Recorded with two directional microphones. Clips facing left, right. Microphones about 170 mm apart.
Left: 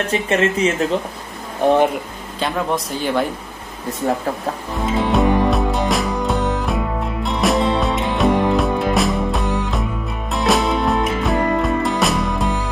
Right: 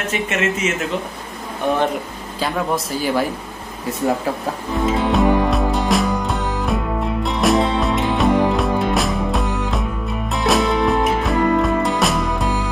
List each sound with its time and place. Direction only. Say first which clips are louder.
0.1 s speech: left 2 dB; 35° left (ahead or behind)
2.4 s a man's voice: even; 5° right (ahead or behind)
4.9 s music: left 1 dB; centre (ahead or behind)